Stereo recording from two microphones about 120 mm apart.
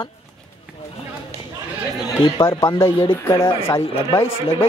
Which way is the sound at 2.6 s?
25° left (ahead or behind).